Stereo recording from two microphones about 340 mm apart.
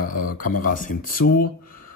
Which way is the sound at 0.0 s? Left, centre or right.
Left.